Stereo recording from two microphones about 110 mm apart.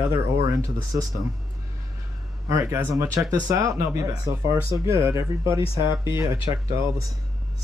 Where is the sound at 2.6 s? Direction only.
20° right (ahead or behind).